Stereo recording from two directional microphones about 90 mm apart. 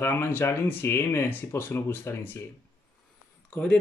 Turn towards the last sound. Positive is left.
turn(degrees=15)  # may be behind; listen again after turning